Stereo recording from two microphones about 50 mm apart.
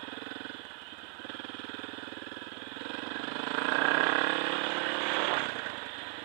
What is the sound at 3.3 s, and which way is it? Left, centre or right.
Vehicle, centre.